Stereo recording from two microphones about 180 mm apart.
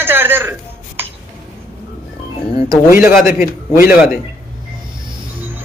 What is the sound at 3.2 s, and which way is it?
Speech, 55° left (ahead or behind).